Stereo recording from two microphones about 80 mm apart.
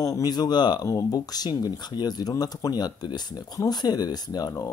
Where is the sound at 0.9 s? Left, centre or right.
Left.